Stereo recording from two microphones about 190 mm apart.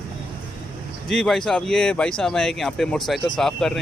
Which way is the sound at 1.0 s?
Centre (ahead or behind).